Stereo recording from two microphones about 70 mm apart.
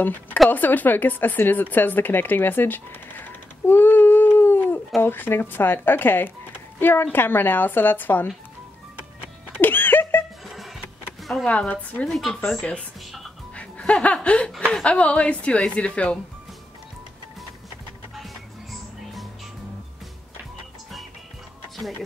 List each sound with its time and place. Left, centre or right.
0.0 s a woman's voice: left
9.6 s a sound: left
10.4 s music: centre
11.4 s a woman's voice: left
12.1 s speech: centre
12.6 s speech: centre
13.6 s music: centre
14.0 s speech: centre
18.1 s music: centre